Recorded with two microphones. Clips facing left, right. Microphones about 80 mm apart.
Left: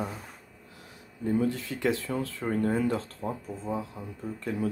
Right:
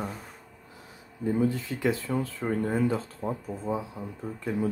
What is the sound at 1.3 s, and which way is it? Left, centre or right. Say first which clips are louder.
Speech: right 1 dB; centre.